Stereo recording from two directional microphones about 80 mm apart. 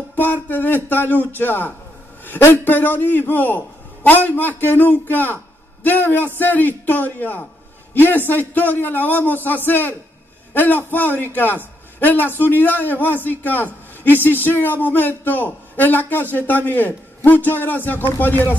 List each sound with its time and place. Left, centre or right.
0.1 s a man's voice: left